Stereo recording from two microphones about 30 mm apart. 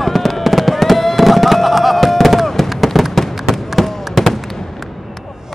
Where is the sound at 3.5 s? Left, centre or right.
Centre.